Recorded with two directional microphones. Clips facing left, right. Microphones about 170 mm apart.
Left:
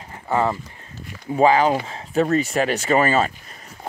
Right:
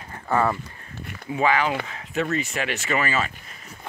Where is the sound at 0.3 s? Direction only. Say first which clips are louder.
Left 1 dB; 20° left (ahead or behind).